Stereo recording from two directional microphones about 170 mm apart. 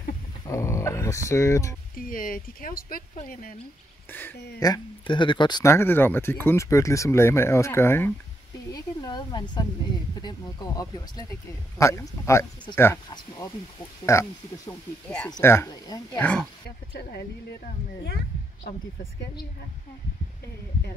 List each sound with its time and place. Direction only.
0.5 s speech: 15° left (ahead or behind)
2.0 s speech: 55° left (ahead or behind)
4.1 s speech: 10° left (ahead or behind)
8.7 s a sound: 25° left (ahead or behind)
10.1 s speech: 25° left (ahead or behind)
14.1 s speech: 15° left (ahead or behind)
15.0 s speech: 5° left (ahead or behind)
16.2 s speech: 5° left (ahead or behind)